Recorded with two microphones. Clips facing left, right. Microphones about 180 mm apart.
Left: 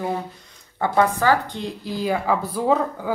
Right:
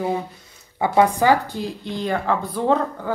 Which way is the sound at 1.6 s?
Centre (ahead or behind).